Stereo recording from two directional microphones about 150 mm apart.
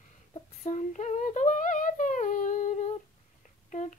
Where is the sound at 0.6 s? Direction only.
50° left (ahead or behind).